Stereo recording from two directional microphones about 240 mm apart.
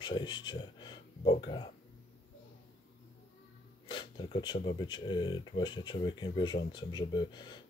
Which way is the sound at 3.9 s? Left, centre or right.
Centre.